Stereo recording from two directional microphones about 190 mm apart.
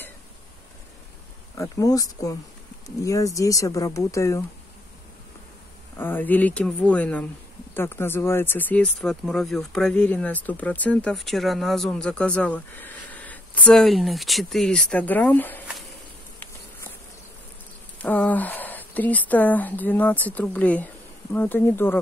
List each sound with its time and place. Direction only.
1.6 s speech: 20° left (ahead or behind)
5.9 s speech: 10° left (ahead or behind)
18.0 s speech: 10° left (ahead or behind)